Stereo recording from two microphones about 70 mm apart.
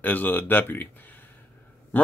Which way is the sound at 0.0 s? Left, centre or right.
Left.